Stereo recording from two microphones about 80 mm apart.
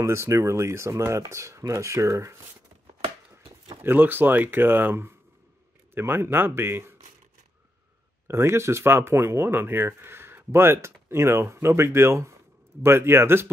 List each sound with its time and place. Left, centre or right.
0.0 s speech: right
3.8 s speech: right
8.3 s speech: right